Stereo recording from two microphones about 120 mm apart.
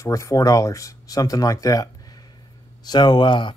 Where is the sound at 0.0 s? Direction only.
25° left (ahead or behind).